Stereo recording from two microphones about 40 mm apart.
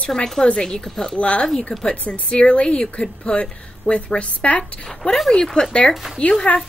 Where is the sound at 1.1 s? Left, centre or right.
Left.